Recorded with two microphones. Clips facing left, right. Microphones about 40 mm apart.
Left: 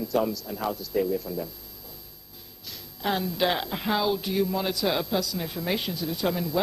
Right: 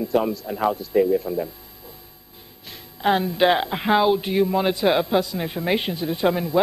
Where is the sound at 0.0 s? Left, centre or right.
Right.